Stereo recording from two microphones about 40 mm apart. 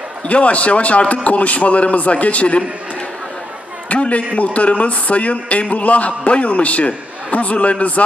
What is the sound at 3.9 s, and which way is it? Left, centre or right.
A man's voice, left.